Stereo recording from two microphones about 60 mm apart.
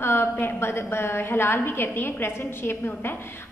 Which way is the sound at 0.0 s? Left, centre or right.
Left.